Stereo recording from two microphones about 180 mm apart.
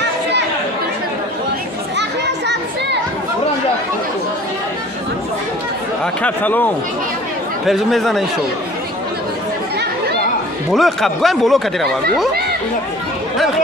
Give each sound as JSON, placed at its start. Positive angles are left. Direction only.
{"t": 2.0, "sound": "children playing", "side_deg": -75}
{"t": 6.2, "sound": "speech", "side_deg": 10}
{"t": 10.7, "sound": "speech", "side_deg": 0}